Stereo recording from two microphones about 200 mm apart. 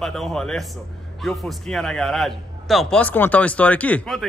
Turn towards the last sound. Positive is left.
turn(degrees=5)  # may be behind; listen again after turning